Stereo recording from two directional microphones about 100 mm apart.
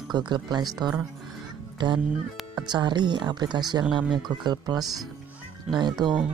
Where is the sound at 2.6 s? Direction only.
50° right (ahead or behind).